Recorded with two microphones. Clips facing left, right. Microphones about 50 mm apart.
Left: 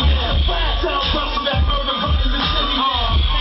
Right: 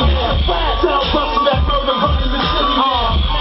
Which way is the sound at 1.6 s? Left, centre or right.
Centre.